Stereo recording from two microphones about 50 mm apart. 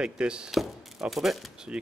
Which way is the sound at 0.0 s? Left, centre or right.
Centre.